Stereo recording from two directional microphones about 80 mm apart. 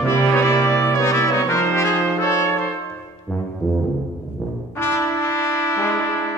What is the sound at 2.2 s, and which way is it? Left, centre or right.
Brass instrument, left.